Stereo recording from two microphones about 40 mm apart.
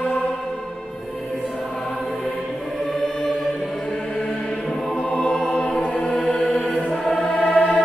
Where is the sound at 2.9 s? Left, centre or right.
Centre.